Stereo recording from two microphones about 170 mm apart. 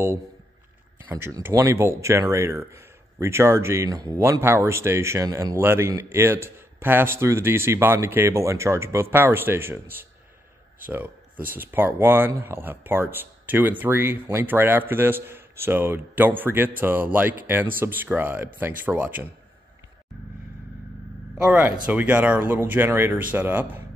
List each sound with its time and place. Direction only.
1.0 s speech: 15° right (ahead or behind)
21.4 s speech: 10° right (ahead or behind)